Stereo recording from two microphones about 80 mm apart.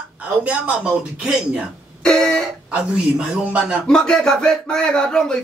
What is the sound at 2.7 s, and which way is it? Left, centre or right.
A man's voice, centre.